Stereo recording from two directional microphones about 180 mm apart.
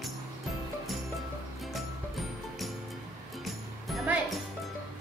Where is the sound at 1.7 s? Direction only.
Centre (ahead or behind).